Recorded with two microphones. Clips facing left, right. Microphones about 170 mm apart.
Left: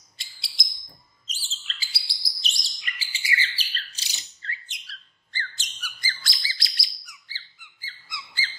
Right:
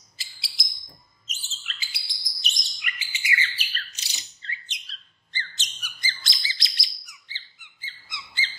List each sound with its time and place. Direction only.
0.2 s bird: centre (ahead or behind)
1.2 s bird: 35° left (ahead or behind)
4.1 s bird: centre (ahead or behind)
4.4 s squawk: 20° right (ahead or behind)